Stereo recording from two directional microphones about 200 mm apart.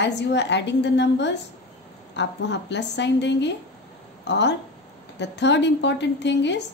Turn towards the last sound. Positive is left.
turn(degrees=60)  # may be behind; listen again after turning